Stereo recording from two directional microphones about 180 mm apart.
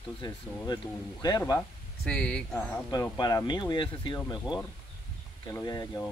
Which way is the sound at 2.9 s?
20° left (ahead or behind).